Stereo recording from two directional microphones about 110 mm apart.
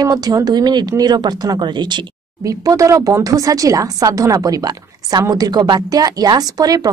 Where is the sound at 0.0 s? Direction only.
35° right (ahead or behind).